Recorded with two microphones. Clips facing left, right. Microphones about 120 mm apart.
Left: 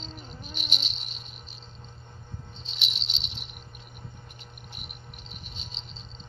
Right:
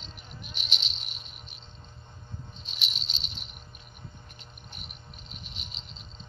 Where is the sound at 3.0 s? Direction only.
70° left (ahead or behind).